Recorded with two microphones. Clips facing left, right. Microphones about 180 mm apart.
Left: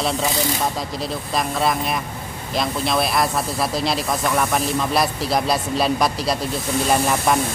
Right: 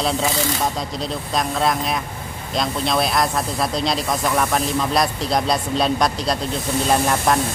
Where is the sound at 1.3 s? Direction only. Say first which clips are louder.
Right 1 dB; centre (ahead or behind).